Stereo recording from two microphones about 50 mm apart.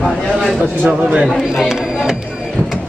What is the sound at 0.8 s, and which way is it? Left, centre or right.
Speech, centre.